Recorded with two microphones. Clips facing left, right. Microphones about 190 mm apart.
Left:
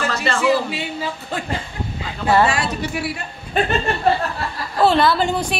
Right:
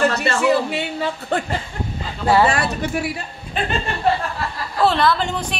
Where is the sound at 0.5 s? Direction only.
60° right (ahead or behind).